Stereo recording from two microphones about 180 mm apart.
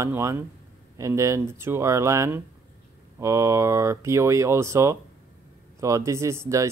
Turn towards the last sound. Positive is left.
turn(degrees=-15)  # may be behind; listen again after turning